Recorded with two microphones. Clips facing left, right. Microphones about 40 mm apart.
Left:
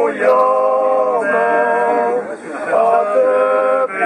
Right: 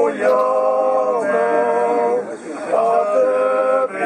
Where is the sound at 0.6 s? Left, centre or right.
Left.